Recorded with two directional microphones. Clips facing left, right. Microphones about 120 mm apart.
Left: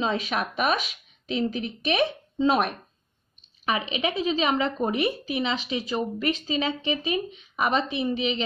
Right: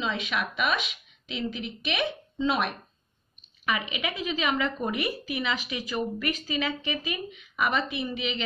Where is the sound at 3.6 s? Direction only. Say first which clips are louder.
Left 4 dB; 30° left (ahead or behind).